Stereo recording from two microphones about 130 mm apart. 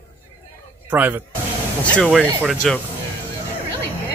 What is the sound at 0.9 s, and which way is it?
Speech, 10° right (ahead or behind).